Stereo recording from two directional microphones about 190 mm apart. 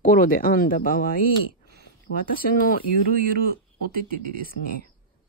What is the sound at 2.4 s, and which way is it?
Speech, 50° left (ahead or behind).